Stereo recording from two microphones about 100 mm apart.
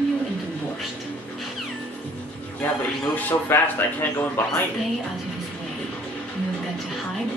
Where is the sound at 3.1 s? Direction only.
20° left (ahead or behind).